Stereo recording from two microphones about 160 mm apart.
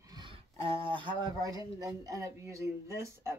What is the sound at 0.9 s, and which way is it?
Speech, 25° right (ahead or behind).